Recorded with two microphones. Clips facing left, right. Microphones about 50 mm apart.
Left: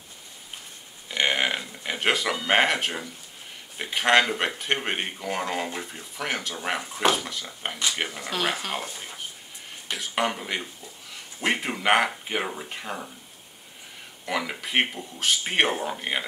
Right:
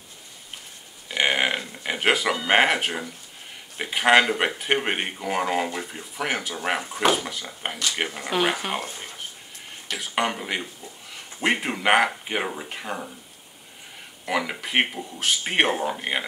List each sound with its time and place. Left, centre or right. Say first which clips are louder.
1.0 s a sound: right 2 dB; centre
3.7 s speech: right 3 dB; centre
9.9 s speech: right 1 dB; centre
14.2 s speech: right 3 dB; centre